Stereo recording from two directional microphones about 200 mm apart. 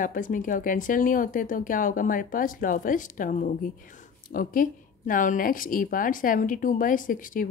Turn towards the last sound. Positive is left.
turn(degrees=45)  # may be behind; listen again after turning